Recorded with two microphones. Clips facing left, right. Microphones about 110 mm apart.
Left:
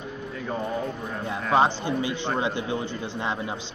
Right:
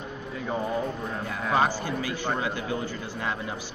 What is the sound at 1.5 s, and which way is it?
Speech, 20° left (ahead or behind).